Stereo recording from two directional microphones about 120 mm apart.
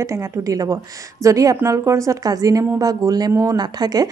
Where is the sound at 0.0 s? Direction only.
25° right (ahead or behind).